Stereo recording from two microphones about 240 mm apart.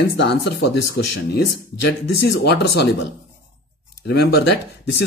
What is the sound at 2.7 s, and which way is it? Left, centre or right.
Speech, left.